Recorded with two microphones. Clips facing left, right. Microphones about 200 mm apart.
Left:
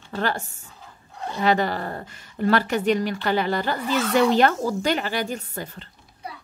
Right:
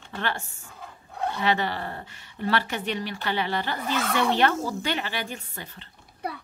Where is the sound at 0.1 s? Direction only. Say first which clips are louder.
Left 5 dB; 40° left (ahead or behind).